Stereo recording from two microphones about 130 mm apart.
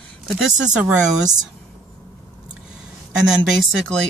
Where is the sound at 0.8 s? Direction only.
10° right (ahead or behind).